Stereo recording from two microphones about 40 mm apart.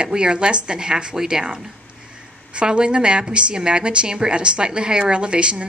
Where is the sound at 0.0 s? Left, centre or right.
Right.